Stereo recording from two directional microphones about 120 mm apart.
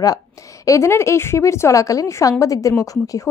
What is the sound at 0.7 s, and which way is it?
A woman's voice, 25° left (ahead or behind).